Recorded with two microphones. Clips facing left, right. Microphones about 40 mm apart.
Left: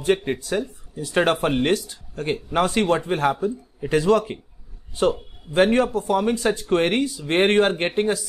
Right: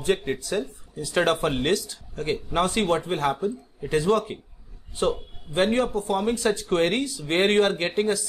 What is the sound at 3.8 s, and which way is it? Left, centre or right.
Speech, left.